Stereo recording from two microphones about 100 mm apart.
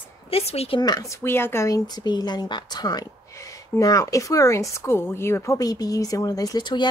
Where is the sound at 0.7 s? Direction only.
40° left (ahead or behind); by 1.7 s 25° left (ahead or behind).